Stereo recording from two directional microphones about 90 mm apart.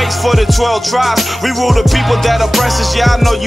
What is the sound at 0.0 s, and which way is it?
Music, centre (ahead or behind).